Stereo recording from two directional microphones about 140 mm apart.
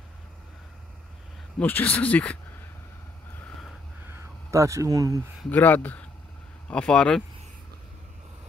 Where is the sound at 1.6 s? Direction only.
15° left (ahead or behind).